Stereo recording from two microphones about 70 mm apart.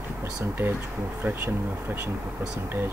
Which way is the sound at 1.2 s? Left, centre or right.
Right.